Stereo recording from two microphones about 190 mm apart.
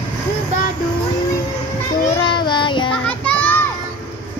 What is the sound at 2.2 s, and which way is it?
Child singing, 25° left (ahead or behind).